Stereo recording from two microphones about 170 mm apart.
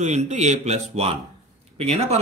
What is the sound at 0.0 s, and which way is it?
Speech, 40° right (ahead or behind).